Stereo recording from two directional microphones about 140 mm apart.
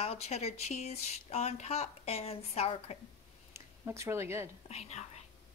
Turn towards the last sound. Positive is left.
turn(degrees=50)  # may be behind; listen again after turning